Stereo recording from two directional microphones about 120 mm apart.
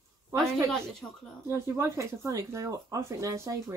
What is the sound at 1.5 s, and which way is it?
Speech, 20° right (ahead or behind).